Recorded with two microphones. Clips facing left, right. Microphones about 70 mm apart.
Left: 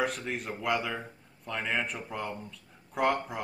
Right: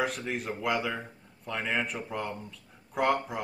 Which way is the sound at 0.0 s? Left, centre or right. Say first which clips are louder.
Right 1 dB; centre.